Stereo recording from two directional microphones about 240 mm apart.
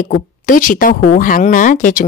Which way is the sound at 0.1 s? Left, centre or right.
Left.